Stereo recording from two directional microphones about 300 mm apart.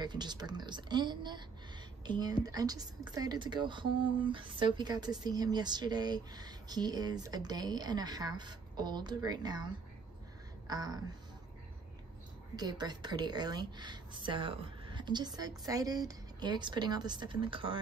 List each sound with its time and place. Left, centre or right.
0.0 s a woman's voice: centre
10.7 s a woman's voice: centre
12.5 s a woman's voice: centre